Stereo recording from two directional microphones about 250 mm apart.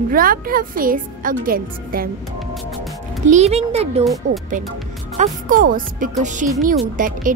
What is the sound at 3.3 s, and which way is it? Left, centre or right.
Speech, right.